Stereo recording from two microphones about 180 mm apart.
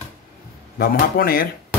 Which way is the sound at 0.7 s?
55° left (ahead or behind).